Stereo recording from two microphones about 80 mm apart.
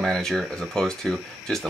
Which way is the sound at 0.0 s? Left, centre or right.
Centre.